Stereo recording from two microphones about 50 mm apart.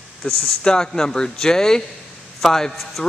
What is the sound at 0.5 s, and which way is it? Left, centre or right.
Speech, centre.